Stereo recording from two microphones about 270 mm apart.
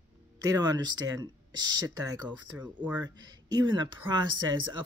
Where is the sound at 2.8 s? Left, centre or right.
Centre.